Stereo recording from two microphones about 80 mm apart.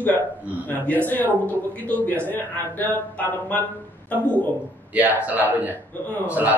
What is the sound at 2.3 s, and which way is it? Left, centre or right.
Speech, left.